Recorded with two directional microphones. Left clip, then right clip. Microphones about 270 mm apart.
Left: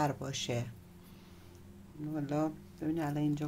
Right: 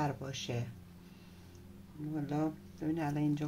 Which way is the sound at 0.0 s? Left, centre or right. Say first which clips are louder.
Left 3 dB; centre.